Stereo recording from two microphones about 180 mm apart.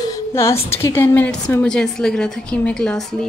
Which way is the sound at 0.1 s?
15° left (ahead or behind).